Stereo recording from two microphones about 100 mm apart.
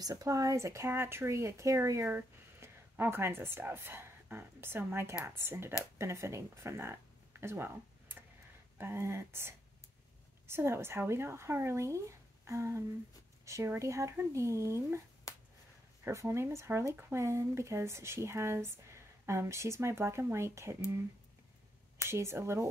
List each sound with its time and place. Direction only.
0.0 s speech: 35° right (ahead or behind)
15.3 s a sound: 35° left (ahead or behind)
16.0 s speech: 30° right (ahead or behind)
22.1 s speech: 30° right (ahead or behind)